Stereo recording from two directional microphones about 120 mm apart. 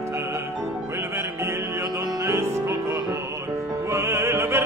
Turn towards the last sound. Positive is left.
turn(degrees=-20)  # may be behind; listen again after turning